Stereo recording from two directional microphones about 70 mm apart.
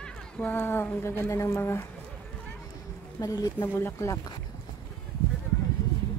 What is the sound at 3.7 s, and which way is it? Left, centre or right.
Speech, left.